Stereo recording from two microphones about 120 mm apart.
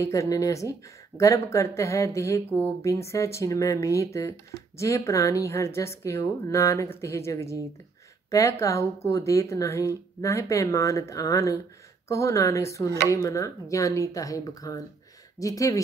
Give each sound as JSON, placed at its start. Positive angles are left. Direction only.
{"t": 0.0, "sound": "speech", "side_deg": 25}